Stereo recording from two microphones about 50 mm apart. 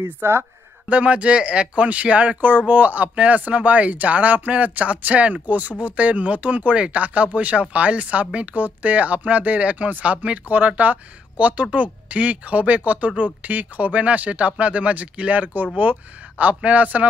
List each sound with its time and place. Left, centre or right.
0.0 s speech: right
0.8 s speech: right